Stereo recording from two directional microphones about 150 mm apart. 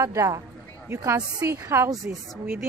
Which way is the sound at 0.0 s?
20° right (ahead or behind).